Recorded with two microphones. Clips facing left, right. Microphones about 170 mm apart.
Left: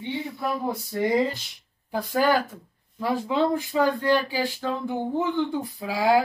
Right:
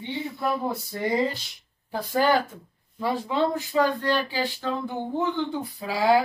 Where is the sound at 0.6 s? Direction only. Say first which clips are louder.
Left 2 dB; 15° left (ahead or behind).